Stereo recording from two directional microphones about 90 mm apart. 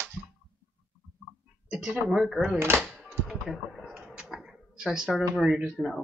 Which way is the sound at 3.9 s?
10° right (ahead or behind).